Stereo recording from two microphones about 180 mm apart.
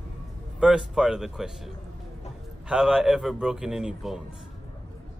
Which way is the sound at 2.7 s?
5° right (ahead or behind).